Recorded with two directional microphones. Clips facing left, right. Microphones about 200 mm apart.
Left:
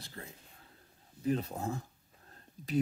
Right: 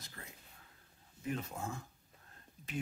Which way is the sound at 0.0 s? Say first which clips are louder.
Left 6 dB; 30° left (ahead or behind).